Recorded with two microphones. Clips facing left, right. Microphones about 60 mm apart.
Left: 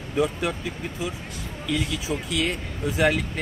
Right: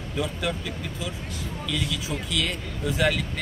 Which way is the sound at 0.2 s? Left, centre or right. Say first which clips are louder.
Left 4 dB; left.